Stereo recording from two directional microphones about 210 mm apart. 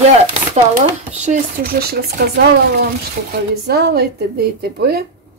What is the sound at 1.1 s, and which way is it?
Speech, 35° right (ahead or behind).